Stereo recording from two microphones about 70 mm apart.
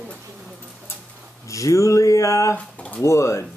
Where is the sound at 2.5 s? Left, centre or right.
Left.